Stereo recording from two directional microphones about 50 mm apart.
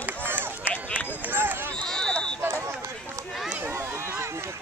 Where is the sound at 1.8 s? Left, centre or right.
Centre.